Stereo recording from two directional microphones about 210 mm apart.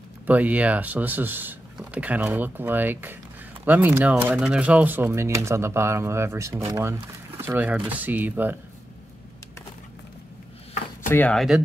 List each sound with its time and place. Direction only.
0.3 s speech: 5° right (ahead or behind)
11.1 s speech: 5° left (ahead or behind)